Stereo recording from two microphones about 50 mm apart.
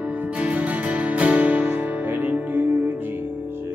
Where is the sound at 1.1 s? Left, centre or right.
Right.